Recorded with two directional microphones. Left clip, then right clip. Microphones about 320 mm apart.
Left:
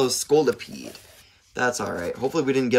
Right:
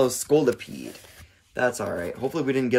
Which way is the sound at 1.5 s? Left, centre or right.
Centre.